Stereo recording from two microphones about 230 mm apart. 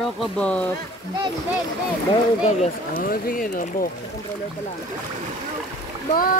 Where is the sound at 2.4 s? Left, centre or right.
Left.